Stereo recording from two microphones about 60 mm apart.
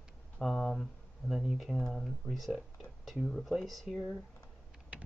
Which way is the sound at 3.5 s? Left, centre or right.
Centre.